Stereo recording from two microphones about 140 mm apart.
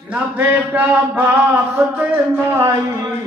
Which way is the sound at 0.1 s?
10° right (ahead or behind).